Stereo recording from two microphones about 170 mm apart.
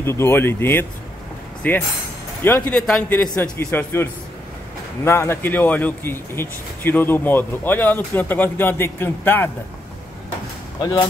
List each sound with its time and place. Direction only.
0.0 s a man's voice: 15° left (ahead or behind)
10.8 s speech: 25° left (ahead or behind)